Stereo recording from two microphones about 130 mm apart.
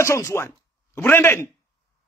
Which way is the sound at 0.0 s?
20° left (ahead or behind).